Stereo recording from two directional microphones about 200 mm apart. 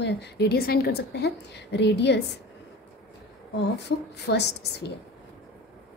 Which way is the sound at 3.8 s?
60° left (ahead or behind).